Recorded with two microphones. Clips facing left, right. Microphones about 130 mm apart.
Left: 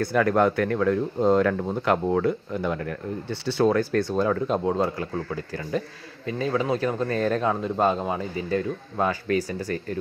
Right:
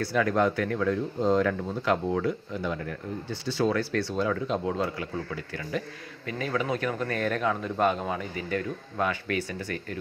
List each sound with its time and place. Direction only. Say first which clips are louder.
0.0 s speech: left 4 dB; 50° left (ahead or behind)
6.2 s a man's voice: left 4 dB; 30° left (ahead or behind)